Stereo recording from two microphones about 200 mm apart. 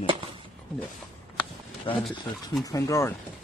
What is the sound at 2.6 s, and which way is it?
Speech, 15° left (ahead or behind).